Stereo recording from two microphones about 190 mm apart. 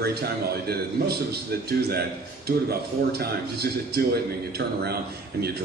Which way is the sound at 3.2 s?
55° right (ahead or behind).